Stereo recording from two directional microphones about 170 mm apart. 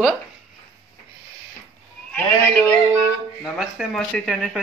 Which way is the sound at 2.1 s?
10° left (ahead or behind).